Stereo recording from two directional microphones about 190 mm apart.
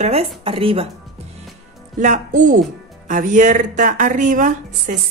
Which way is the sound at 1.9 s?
40° right (ahead or behind).